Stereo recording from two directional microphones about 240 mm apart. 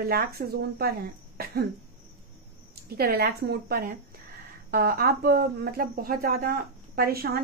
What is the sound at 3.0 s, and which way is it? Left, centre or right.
Speech, right.